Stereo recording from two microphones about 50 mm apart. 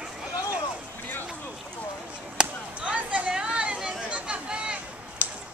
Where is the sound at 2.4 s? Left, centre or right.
Right.